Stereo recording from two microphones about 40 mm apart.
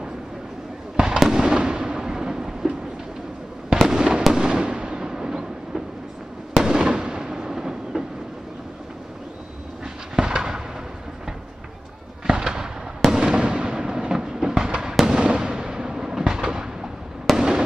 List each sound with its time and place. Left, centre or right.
0.9 s fireworks: right
3.8 s fireworks: centre
6.6 s fireworks: centre
10.1 s fireworks: centre
12.3 s fireworks: centre
15.1 s a sound: right
17.4 s fireworks: centre